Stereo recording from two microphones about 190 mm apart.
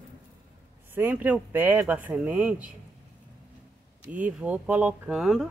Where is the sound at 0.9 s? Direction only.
10° right (ahead or behind).